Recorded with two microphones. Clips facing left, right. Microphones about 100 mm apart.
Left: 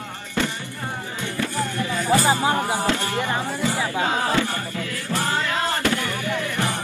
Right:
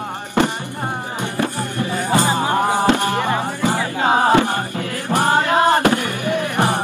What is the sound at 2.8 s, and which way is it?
Music, 60° right (ahead or behind).